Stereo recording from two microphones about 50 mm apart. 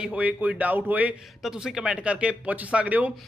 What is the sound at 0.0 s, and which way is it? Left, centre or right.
A man's voice, right.